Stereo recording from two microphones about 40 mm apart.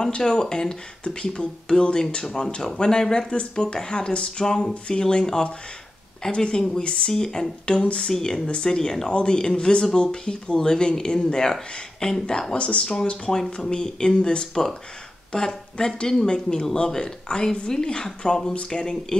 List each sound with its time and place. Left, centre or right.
0.0 s speech: centre
7.7 s speech: left
8.1 s speech: centre
12.5 s speech: left